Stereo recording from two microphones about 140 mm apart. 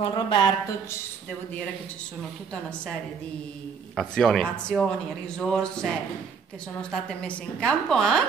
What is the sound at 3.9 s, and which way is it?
A woman's voice, 5° left (ahead or behind).